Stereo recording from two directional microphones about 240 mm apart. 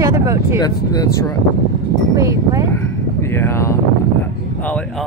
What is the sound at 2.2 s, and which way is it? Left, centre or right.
Speech, centre.